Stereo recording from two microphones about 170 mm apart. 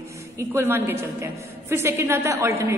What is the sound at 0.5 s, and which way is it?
A woman's voice, 15° right (ahead or behind).